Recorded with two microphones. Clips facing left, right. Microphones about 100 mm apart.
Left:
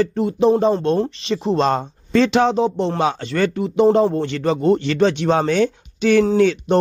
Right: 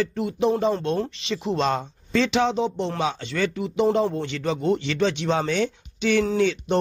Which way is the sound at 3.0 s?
55° left (ahead or behind).